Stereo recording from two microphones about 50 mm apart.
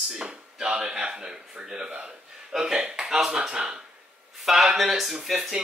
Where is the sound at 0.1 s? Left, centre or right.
Centre.